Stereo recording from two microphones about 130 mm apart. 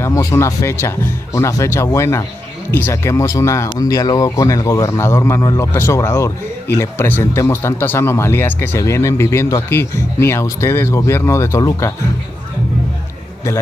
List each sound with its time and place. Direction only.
0.0 s a man's voice: 25° left (ahead or behind)